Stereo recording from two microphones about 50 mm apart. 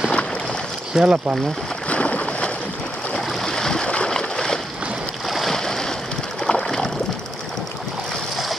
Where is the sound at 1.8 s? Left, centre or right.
Left.